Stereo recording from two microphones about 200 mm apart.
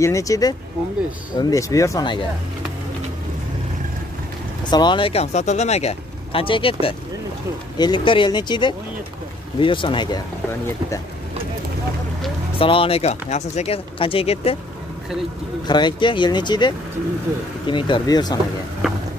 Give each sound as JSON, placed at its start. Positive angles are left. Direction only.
{"t": 0.0, "sound": "speech", "side_deg": 15}
{"t": 4.6, "sound": "speech", "side_deg": 20}
{"t": 12.5, "sound": "speech", "side_deg": 25}
{"t": 15.6, "sound": "speech", "side_deg": 20}